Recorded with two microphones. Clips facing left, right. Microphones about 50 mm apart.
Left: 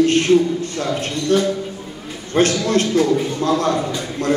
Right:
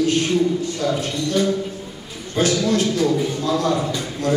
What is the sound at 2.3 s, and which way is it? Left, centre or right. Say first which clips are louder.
A man's voice: left 2 dB; left.